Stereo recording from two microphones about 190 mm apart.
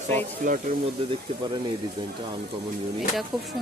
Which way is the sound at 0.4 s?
45° right (ahead or behind).